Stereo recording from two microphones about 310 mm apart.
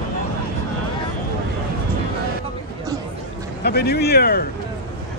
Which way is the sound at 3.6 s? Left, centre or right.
Left.